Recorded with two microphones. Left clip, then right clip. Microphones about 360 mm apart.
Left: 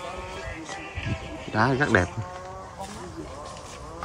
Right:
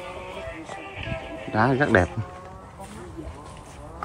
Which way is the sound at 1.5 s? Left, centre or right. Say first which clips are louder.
Right 2 dB; centre.